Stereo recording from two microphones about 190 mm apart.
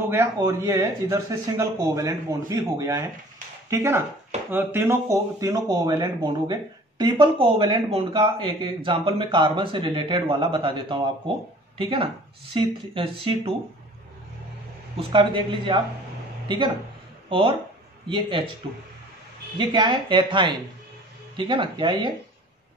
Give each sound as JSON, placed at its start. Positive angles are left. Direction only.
{"t": 0.1, "sound": "speech", "side_deg": -15}
{"t": 15.0, "sound": "speech", "side_deg": -25}
{"t": 19.6, "sound": "speech", "side_deg": -25}